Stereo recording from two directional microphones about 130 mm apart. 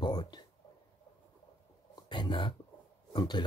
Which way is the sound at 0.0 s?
35° left (ahead or behind).